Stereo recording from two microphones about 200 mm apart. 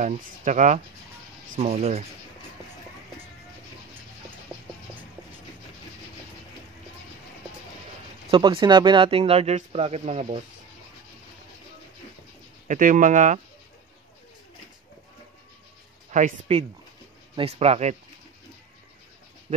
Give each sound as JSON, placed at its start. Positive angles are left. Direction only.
{"t": 0.0, "sound": "speech", "side_deg": -40}
{"t": 8.3, "sound": "speech", "side_deg": -25}
{"t": 12.6, "sound": "speech", "side_deg": -40}
{"t": 16.1, "sound": "speech", "side_deg": -35}